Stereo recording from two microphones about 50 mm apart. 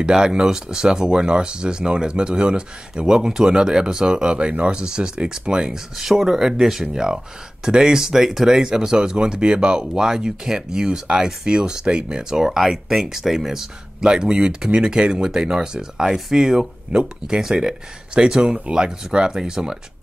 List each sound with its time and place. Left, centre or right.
0.0 s speech: centre
6.9 s speech: centre